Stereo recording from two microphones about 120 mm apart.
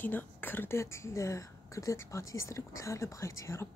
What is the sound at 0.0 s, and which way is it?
A woman's voice, 15° left (ahead or behind).